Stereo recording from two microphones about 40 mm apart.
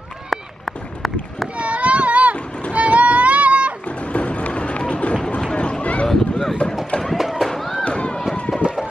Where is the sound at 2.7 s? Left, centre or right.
Right.